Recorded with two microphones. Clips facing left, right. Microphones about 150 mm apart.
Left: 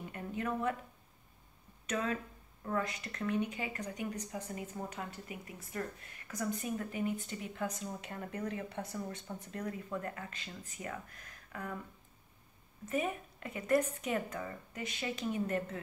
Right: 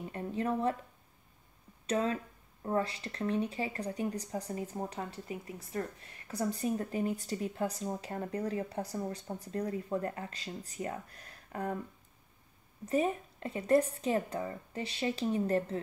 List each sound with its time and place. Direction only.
0.0 s a sound: 30° right (ahead or behind)
1.9 s speech: 35° right (ahead or behind)
12.8 s speech: 30° right (ahead or behind)